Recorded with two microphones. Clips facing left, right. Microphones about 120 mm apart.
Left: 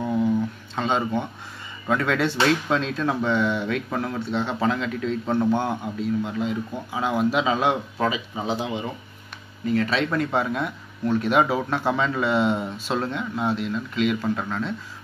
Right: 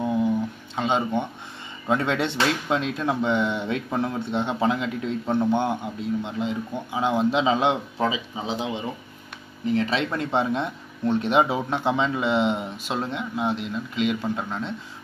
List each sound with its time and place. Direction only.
0.0 s a sound: 15° right (ahead or behind)
0.7 s speech: 20° right (ahead or behind)
9.7 s speech: 20° right (ahead or behind)